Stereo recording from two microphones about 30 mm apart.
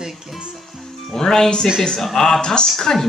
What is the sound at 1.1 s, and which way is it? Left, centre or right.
Speech, centre.